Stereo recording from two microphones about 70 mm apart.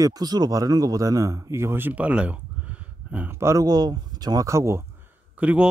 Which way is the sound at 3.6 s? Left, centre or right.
Right.